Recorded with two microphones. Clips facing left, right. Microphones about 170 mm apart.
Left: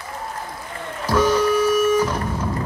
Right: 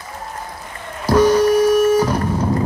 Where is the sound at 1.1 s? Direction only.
40° right (ahead or behind).